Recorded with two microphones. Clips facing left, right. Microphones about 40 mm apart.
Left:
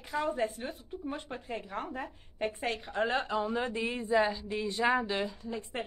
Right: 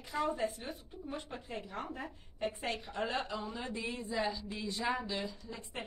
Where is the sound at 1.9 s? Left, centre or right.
Left.